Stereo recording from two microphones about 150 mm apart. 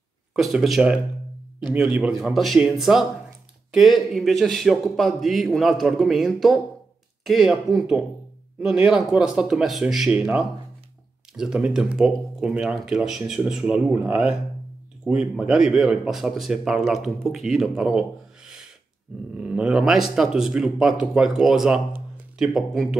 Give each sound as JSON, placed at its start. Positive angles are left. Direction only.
{"t": 0.3, "sound": "speech", "side_deg": -5}
{"t": 8.8, "sound": "speech", "side_deg": -5}